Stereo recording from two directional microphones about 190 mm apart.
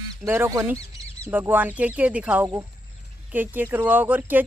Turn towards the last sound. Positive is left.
turn(degrees=-10)  # may be behind; listen again after turning